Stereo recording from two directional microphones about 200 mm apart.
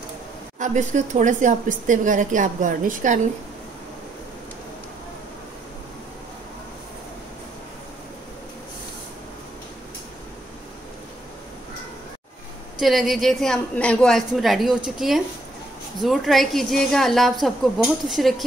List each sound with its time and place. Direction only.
0.6 s speech: 35° right (ahead or behind)
12.7 s a woman's voice: centre (ahead or behind)